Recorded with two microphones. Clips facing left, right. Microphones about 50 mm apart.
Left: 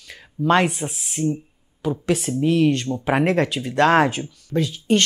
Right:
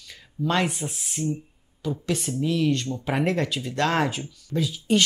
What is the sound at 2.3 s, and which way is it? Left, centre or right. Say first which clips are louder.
Speech: left 5 dB; left.